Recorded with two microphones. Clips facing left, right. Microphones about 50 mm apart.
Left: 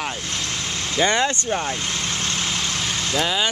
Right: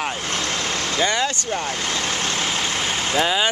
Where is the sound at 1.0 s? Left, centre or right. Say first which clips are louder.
Left 2 dB; left.